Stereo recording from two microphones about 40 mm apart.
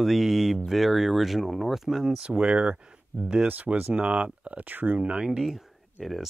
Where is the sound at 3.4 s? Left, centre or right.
Right.